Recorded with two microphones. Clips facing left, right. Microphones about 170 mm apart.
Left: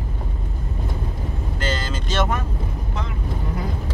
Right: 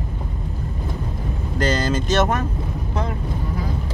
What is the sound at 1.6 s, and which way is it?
Speech, 40° right (ahead or behind).